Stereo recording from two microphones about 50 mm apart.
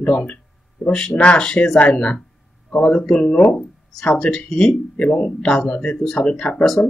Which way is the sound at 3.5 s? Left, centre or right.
Centre.